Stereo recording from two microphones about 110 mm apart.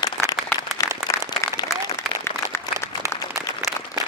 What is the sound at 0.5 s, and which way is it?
Applause, 25° left (ahead or behind).